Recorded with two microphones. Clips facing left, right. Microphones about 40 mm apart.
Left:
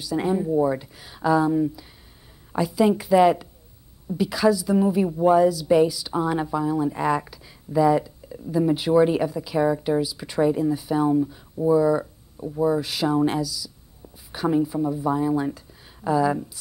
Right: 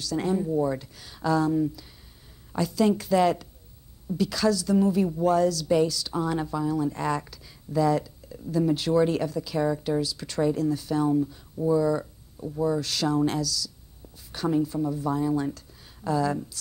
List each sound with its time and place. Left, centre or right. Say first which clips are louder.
0.0 s a woman's voice: left 3 dB; centre